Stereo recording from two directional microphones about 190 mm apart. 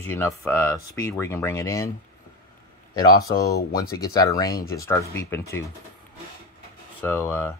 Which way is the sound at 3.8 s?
20° left (ahead or behind).